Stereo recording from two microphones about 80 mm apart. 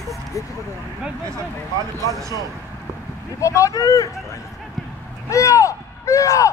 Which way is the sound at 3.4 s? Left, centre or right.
Left.